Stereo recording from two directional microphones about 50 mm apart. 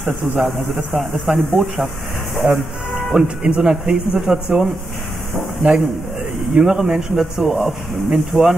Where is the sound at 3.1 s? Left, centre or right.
Centre.